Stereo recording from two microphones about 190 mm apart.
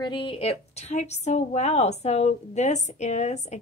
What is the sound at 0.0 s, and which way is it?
A woman's voice, 25° left (ahead or behind).